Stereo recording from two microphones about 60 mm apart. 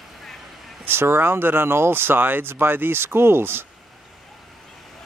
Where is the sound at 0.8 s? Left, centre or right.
Right.